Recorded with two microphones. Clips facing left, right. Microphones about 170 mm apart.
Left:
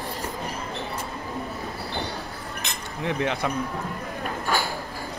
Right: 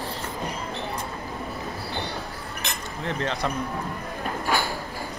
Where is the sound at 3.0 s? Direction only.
15° left (ahead or behind).